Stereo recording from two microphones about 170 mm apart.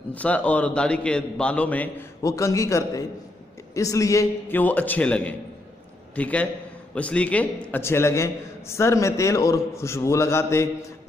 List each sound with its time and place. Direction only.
0.1 s a man's voice: 10° left (ahead or behind)